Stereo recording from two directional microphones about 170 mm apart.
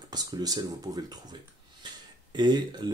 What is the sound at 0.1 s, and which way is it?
Speech, 20° right (ahead or behind).